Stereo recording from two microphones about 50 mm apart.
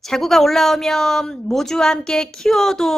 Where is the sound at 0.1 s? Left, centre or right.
Centre.